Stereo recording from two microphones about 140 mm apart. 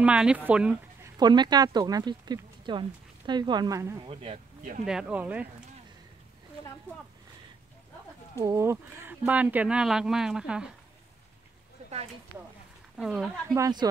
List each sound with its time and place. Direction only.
0.0 s speech: 10° right (ahead or behind)
1.1 s speech: 30° right (ahead or behind)
4.0 s speech: 40° right (ahead or behind)
4.8 s speech: 5° right (ahead or behind)
8.4 s speech: 20° right (ahead or behind); by 10.7 s 5° right (ahead or behind)
12.9 s speech: 5° right (ahead or behind)
13.6 s a woman's voice: 30° right (ahead or behind)